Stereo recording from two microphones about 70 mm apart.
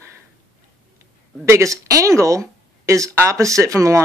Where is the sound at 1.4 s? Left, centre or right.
Right.